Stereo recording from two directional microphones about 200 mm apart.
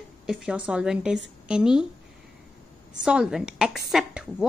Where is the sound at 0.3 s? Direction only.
5° right (ahead or behind).